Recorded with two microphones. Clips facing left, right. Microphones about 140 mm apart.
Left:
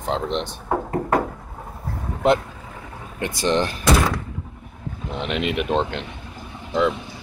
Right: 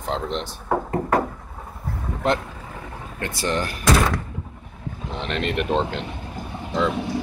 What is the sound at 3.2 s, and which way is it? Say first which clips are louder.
Speech: left 4 dB; 15° left (ahead or behind).